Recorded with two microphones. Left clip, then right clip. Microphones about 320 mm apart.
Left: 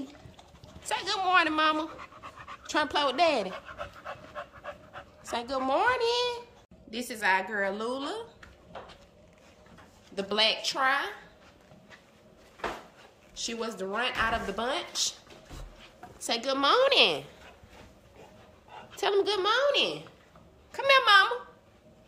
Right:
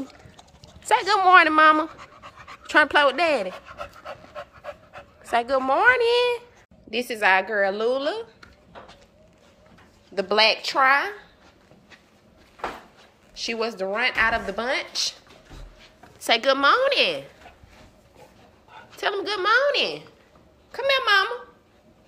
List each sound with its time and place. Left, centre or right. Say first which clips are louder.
0.8 s speech: right 11 dB; centre
2.0 s pant: right 1 dB; right
2.7 s a woman's voice: right 10 dB; centre
3.5 s pant: right 3 dB; right
5.3 s a woman's voice: right 8 dB; centre
10.1 s speech: right 7 dB; centre
13.3 s a woman's voice: right 8 dB; centre
16.3 s a woman's voice: right 8 dB; centre
18.9 s a woman's voice: right 1 dB; centre